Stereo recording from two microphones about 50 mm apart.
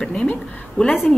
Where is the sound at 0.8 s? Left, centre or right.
Centre.